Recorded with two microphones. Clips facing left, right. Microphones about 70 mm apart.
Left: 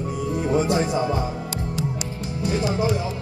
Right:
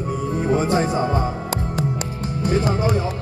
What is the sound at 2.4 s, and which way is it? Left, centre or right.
Music, right.